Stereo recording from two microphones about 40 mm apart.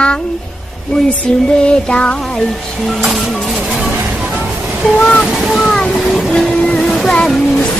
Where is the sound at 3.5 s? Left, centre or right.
Centre.